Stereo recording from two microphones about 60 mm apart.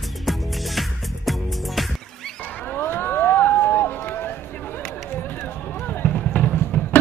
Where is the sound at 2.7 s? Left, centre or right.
Left.